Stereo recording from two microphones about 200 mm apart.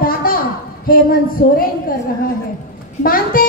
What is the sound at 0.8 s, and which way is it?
A woman's voice, 45° left (ahead or behind).